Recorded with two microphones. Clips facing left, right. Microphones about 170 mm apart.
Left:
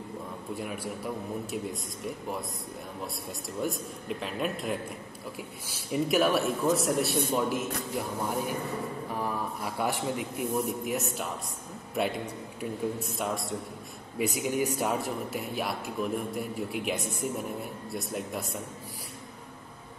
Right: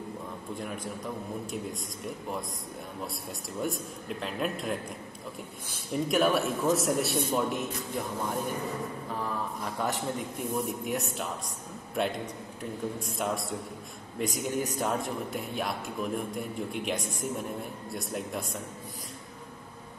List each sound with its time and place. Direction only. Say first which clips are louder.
0.6 s a man's voice: left 1 dB; 5° left (ahead or behind)
3.6 s a man's voice: left 1 dB; centre (ahead or behind)
9.1 s a man's voice: left 1 dB; 10° left (ahead or behind)